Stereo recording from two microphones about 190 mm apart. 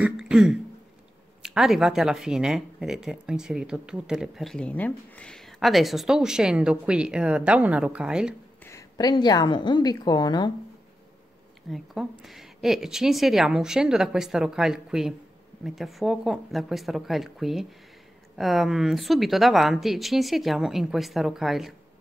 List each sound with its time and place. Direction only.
0.0 s speech: 5° right (ahead or behind)
8.6 s a woman's voice: 20° left (ahead or behind)
11.7 s speech: centre (ahead or behind)